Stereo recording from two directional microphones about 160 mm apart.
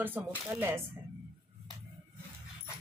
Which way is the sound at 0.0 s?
10° right (ahead or behind).